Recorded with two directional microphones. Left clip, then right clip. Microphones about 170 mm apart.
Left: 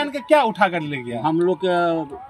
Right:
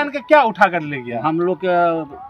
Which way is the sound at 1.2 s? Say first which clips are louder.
Right 1 dB; 15° right (ahead or behind).